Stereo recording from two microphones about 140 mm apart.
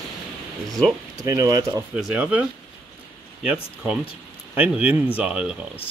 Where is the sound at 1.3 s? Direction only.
25° right (ahead or behind).